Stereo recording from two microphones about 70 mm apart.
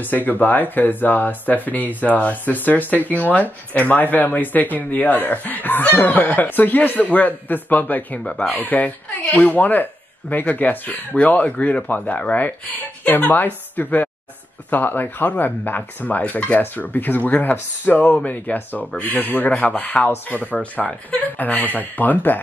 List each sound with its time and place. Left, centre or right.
0.0 s speech: left
8.2 s speech: centre